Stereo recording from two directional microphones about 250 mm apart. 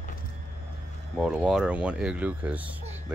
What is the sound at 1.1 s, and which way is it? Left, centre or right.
Speech, centre.